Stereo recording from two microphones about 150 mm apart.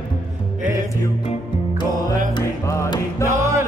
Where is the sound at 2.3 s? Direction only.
25° left (ahead or behind).